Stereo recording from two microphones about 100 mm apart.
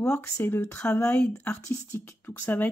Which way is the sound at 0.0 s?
20° left (ahead or behind).